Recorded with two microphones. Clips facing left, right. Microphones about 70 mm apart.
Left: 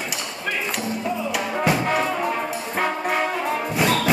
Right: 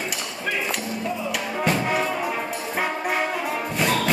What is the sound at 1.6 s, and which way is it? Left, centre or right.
Brass instrument, centre.